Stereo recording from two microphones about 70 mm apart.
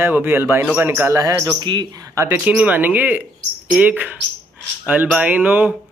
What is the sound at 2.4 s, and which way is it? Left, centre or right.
Speech, right.